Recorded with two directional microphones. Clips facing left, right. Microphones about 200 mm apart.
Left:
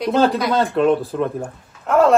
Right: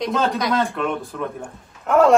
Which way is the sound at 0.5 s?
30° left (ahead or behind).